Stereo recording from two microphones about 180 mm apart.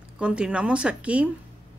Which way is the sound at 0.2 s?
5° right (ahead or behind).